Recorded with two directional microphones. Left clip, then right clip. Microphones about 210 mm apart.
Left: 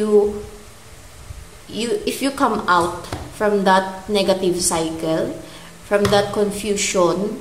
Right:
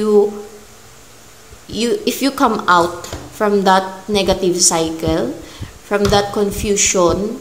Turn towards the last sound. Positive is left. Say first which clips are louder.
# right 4 dB
turn(degrees=-10)  # may be behind; listen again after turning